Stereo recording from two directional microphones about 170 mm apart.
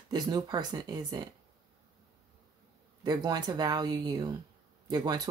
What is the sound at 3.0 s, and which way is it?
Speech, 25° right (ahead or behind).